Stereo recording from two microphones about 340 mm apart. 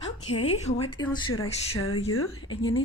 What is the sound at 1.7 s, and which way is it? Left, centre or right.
Speech, left.